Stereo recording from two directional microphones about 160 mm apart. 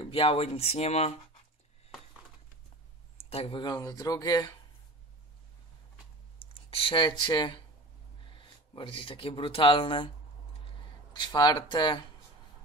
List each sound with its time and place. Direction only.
0.0 s speech: 35° left (ahead or behind)
3.2 s speech: 40° left (ahead or behind)
6.5 s speech: 35° left (ahead or behind)
11.1 s speech: 30° left (ahead or behind)